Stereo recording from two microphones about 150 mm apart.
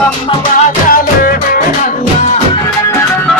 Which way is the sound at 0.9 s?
70° left (ahead or behind).